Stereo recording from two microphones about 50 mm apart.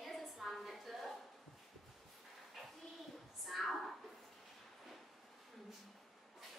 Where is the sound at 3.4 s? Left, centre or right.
Centre.